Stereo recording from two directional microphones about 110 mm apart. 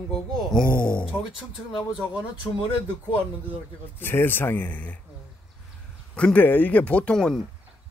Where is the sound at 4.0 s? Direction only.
20° left (ahead or behind).